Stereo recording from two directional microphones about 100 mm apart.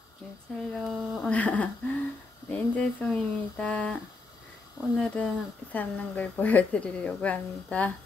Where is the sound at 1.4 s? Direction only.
15° left (ahead or behind).